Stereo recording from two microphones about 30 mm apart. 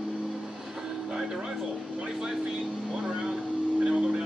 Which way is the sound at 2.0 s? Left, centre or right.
Right.